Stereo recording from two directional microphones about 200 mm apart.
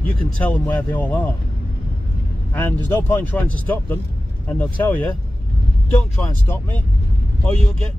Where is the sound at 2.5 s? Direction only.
10° left (ahead or behind).